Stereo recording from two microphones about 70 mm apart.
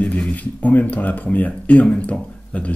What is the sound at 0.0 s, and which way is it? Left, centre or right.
Speech, centre.